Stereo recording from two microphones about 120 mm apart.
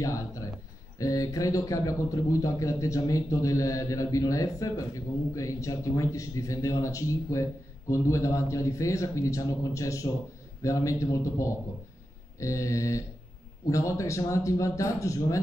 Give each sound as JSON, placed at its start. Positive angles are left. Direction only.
{"t": 0.0, "sound": "a man's voice", "side_deg": 25}